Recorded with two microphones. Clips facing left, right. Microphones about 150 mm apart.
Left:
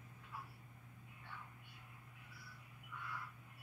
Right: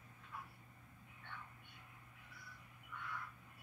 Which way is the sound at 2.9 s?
5° left (ahead or behind).